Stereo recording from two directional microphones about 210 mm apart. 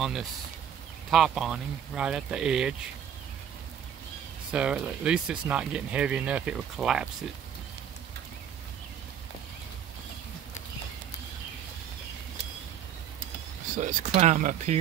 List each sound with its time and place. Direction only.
1.1 s speech: centre (ahead or behind)
4.5 s speech: 5° right (ahead or behind)
13.7 s speech: 35° right (ahead or behind)